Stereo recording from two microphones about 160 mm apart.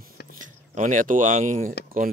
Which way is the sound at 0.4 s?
55° right (ahead or behind).